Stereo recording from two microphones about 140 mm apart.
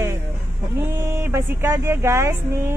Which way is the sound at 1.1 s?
15° right (ahead or behind).